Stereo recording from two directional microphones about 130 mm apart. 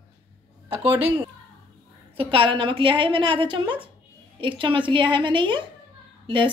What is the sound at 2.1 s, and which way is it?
A woman's voice, 40° right (ahead or behind).